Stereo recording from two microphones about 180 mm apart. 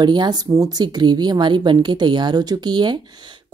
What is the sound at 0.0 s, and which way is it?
Speech, 25° right (ahead or behind).